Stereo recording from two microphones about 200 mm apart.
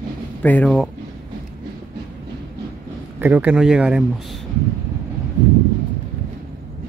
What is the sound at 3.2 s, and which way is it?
Speech, 10° right (ahead or behind).